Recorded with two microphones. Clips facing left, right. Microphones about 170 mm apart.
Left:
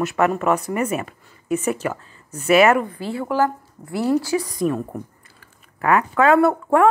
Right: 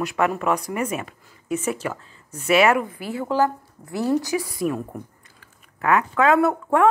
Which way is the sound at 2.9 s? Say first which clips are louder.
Left 1 dB; 15° right (ahead or behind).